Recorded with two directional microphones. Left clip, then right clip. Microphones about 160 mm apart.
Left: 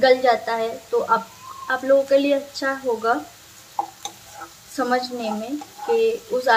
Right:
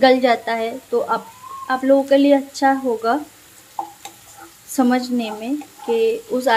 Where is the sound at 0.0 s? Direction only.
50° right (ahead or behind).